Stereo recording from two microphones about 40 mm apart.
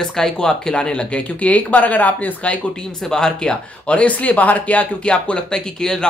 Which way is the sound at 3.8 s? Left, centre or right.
Left.